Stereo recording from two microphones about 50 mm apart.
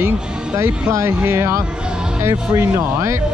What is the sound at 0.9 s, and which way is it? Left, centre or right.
Speech, right.